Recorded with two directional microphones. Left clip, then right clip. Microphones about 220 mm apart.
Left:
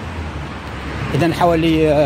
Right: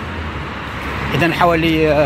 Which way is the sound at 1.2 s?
25° left (ahead or behind).